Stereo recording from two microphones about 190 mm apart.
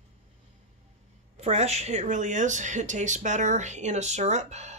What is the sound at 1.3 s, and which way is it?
Speech, 35° right (ahead or behind).